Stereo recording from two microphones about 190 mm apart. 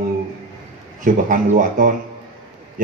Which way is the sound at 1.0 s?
45° right (ahead or behind).